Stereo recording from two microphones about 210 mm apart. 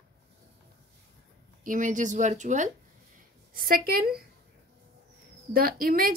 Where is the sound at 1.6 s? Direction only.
35° right (ahead or behind).